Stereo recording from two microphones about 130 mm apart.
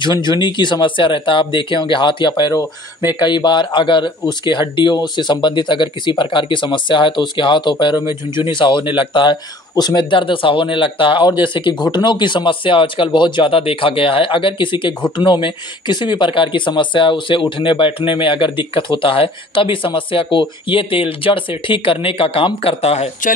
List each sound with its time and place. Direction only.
0.0 s speech: 35° left (ahead or behind); by 23.0 s 50° left (ahead or behind)